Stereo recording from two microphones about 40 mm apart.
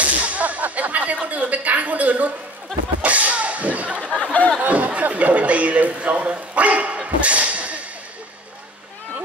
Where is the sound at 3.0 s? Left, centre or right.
Right.